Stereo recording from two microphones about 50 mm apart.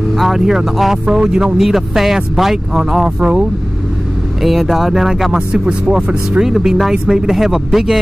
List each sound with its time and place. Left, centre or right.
0.2 s speech: centre
1.6 s speech: centre
4.4 s speech: centre
5.5 s speech: centre